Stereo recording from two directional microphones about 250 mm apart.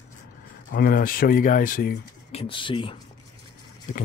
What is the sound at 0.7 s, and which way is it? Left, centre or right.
Speech, left.